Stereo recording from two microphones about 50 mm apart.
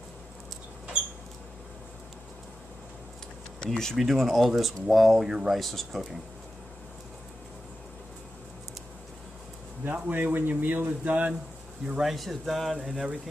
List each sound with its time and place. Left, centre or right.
3.5 s speech: centre
3.9 s speech: centre
5.6 s speech: centre
9.9 s a man's voice: right
12.0 s speech: centre
12.8 s a sound: centre